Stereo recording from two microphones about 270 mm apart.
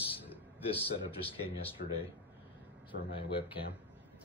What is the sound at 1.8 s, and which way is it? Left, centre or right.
Speech, left.